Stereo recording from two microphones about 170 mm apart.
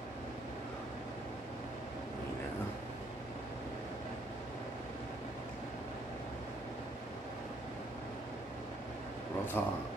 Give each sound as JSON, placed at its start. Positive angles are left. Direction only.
{"t": 9.6, "sound": "speech", "side_deg": 10}